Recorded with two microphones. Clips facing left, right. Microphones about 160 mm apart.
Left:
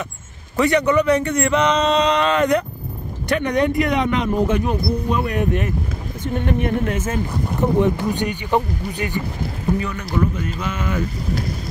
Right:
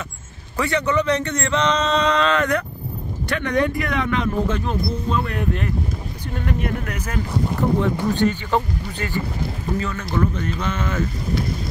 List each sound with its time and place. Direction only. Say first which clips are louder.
0.6 s speech: left 4 dB; 15° left (ahead or behind)